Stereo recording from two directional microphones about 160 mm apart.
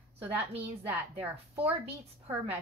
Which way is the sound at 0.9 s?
10° right (ahead or behind).